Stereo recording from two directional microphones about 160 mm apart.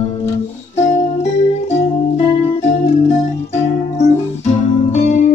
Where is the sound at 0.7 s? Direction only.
45° left (ahead or behind).